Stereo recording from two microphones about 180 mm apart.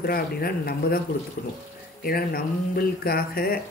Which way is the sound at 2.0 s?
55° left (ahead or behind).